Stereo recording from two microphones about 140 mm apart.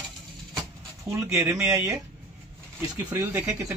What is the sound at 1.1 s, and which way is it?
Speech, 20° right (ahead or behind).